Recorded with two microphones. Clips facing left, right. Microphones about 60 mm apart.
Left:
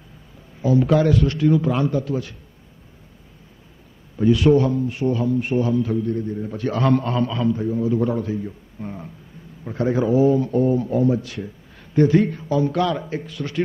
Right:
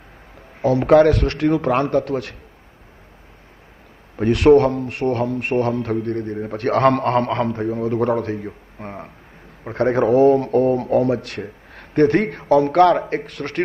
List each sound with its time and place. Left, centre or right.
0.6 s a man's voice: right
4.2 s a man's voice: right
8.5 s a sound: right
9.7 s a man's voice: right